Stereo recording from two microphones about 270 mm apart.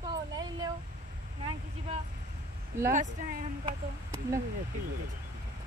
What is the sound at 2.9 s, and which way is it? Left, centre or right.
Speech, right.